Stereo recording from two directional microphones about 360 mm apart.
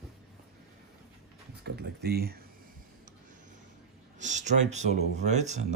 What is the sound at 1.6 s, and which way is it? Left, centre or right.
Speech, right.